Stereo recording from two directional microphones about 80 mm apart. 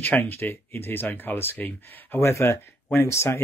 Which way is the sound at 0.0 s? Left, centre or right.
Left.